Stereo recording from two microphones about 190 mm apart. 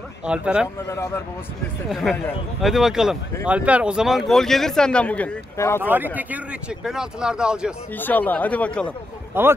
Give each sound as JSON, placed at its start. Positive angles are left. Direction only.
{"t": 0.2, "sound": "a man's voice", "side_deg": -5}
{"t": 0.8, "sound": "speech", "side_deg": 15}
{"t": 1.9, "sound": "a man's voice", "side_deg": 0}
{"t": 5.8, "sound": "a man's voice", "side_deg": -10}
{"t": 7.9, "sound": "speech", "side_deg": 10}
{"t": 9.3, "sound": "speech", "side_deg": -10}